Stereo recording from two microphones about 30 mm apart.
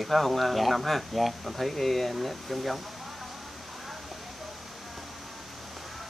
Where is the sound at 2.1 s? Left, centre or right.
Centre.